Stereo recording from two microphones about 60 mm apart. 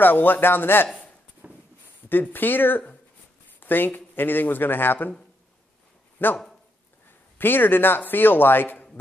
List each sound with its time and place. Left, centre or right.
0.0 s speech: left
1.4 s a sound: right
2.0 s speech: left
6.2 s speech: left